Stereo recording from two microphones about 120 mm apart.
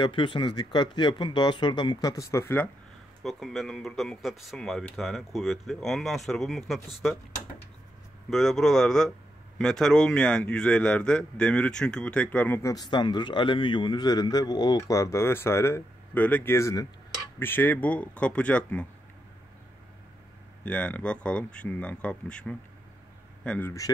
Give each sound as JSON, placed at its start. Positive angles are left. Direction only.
{"t": 0.0, "sound": "a man's voice", "side_deg": 45}
{"t": 3.3, "sound": "speech", "side_deg": 0}
{"t": 8.3, "sound": "a man's voice", "side_deg": 0}
{"t": 12.7, "sound": "a man's voice", "side_deg": 35}
{"t": 20.6, "sound": "a man's voice", "side_deg": 10}